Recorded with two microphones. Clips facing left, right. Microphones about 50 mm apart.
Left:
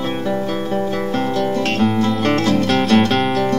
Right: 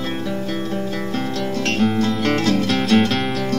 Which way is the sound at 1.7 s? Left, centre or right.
Centre.